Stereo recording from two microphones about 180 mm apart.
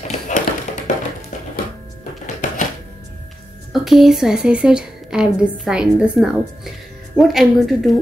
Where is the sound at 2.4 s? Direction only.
45° left (ahead or behind).